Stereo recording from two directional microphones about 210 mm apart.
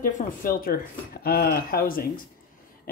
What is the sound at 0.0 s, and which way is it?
Speech, 40° left (ahead or behind).